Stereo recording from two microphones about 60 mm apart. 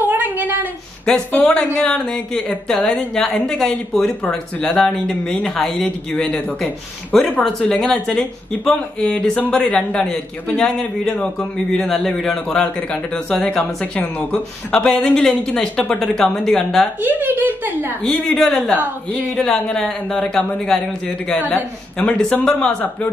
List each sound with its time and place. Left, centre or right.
0.0 s a sound: right
1.1 s speech: centre
17.0 s speech: right
18.0 s speech: centre
21.9 s speech: centre